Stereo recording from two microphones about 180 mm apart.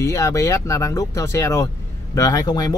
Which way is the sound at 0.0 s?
15° left (ahead or behind).